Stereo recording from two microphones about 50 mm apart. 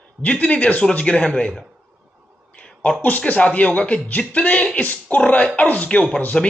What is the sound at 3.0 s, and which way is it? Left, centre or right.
A man's voice, left.